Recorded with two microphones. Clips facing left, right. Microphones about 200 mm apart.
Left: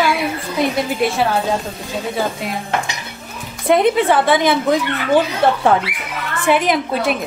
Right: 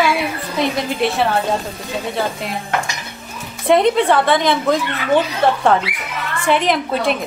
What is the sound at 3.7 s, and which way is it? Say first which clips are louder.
Speech: even; 5° left (ahead or behind).